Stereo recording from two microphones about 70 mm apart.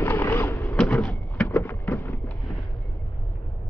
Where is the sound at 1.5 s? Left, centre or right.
Left.